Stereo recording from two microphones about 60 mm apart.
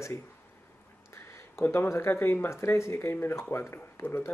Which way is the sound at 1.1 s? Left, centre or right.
Left.